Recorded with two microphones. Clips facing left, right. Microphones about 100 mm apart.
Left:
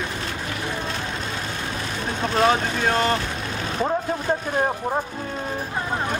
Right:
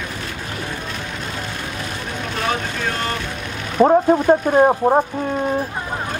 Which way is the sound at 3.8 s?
45° right (ahead or behind).